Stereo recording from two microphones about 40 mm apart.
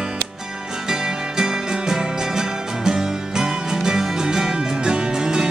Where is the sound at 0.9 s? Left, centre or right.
Centre.